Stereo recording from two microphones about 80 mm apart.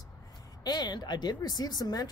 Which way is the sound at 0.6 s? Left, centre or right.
Left.